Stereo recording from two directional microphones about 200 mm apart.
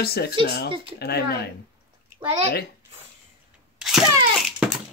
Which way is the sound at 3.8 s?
Centre (ahead or behind).